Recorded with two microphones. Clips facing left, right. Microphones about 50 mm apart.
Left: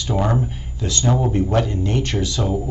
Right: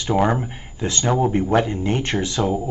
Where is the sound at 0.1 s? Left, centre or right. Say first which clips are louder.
Right 2 dB; right.